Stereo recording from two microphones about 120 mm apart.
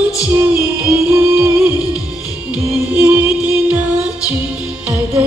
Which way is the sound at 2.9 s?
10° right (ahead or behind).